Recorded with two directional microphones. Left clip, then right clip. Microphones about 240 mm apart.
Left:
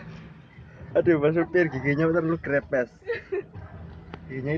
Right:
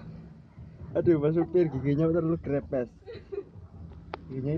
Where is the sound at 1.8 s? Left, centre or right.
Left.